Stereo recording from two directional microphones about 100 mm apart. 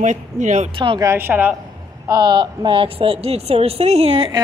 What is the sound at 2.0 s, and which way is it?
A woman's voice, 45° right (ahead or behind).